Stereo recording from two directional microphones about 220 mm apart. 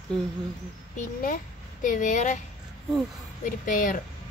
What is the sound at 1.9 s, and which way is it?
Speech, 35° left (ahead or behind).